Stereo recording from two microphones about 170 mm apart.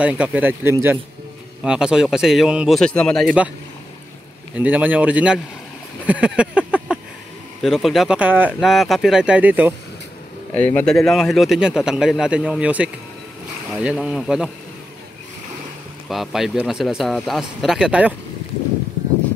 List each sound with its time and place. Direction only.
0.0 s a man's voice: 10° right (ahead or behind)
4.6 s speech: 10° right (ahead or behind)
6.0 s a sound: 5° right (ahead or behind)
7.6 s a man's voice: centre (ahead or behind)
10.5 s a man's voice: 10° left (ahead or behind)
16.1 s a man's voice: centre (ahead or behind)